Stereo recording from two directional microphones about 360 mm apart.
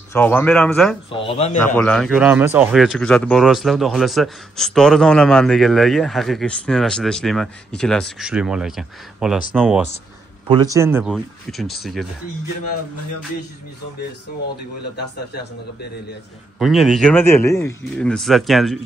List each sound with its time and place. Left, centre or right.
0.1 s speech: centre
1.1 s speech: centre
1.8 s speech: centre
14.8 s speech: left
16.5 s speech: centre